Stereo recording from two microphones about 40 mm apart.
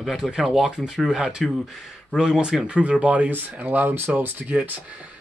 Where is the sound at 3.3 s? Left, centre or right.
Right.